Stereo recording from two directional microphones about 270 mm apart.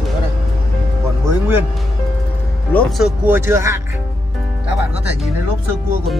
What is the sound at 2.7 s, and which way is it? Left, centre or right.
Speech, centre.